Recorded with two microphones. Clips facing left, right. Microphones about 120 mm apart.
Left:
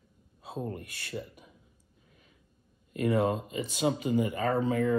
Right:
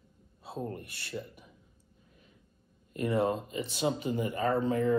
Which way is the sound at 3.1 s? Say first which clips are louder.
Left 1 dB; centre (ahead or behind).